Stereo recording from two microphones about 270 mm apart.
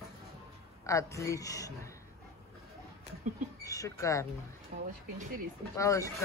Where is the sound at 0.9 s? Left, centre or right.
Centre.